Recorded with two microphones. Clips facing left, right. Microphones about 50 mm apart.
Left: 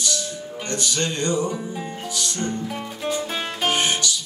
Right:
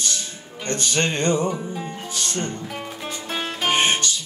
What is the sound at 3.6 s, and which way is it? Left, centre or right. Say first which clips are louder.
Music: right 2 dB; right.